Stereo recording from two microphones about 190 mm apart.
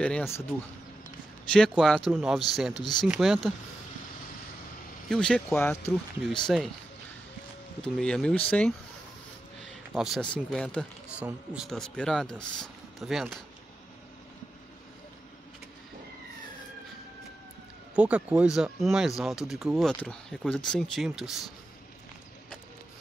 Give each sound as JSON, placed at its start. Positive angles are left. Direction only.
{"t": 0.0, "sound": "speech", "side_deg": 10}
{"t": 1.5, "sound": "speech", "side_deg": 5}
{"t": 2.8, "sound": "speech", "side_deg": 20}
{"t": 3.1, "sound": "speech", "side_deg": 0}
{"t": 5.0, "sound": "speech", "side_deg": 5}
{"t": 7.8, "sound": "speech", "side_deg": 5}
{"t": 9.9, "sound": "speech", "side_deg": 0}
{"t": 11.1, "sound": "speech", "side_deg": -5}
{"t": 17.9, "sound": "speech", "side_deg": -5}